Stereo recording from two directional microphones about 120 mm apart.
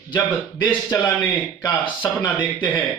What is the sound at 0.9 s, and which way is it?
Speech, 15° left (ahead or behind).